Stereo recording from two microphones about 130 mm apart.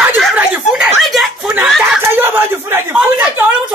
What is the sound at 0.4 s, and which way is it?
Snicker, 5° right (ahead or behind).